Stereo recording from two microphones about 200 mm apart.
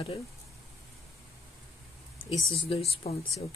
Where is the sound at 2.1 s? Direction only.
25° left (ahead or behind).